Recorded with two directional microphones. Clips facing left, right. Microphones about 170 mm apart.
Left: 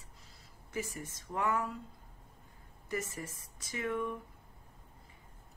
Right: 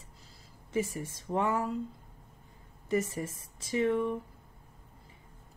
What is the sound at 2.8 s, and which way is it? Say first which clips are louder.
A woman's voice: right 8 dB; 25° right (ahead or behind).